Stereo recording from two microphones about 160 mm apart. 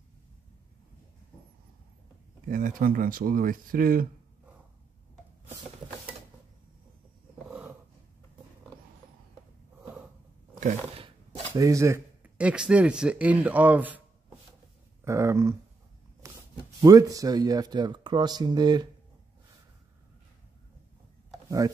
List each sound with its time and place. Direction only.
2.4 s speech: 60° right (ahead or behind)
11.5 s speech: 20° right (ahead or behind)
15.0 s speech: 20° right (ahead or behind)
16.2 s a sound: 20° right (ahead or behind)
16.8 s speech: 20° right (ahead or behind)
21.5 s speech: 20° right (ahead or behind)